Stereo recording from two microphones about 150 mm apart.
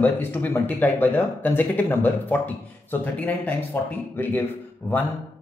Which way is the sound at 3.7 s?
15° left (ahead or behind).